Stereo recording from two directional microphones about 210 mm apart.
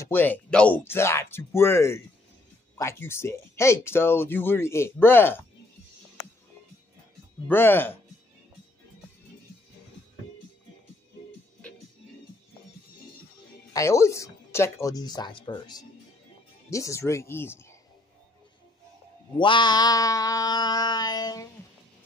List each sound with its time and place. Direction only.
0.0 s speech: 10° left (ahead or behind)
7.4 s speech: 10° left (ahead or behind)
13.7 s speech: 15° left (ahead or behind)
19.3 s mantra: 20° left (ahead or behind)